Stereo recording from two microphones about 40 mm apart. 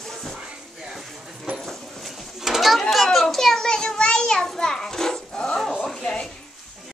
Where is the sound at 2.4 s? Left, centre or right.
Centre.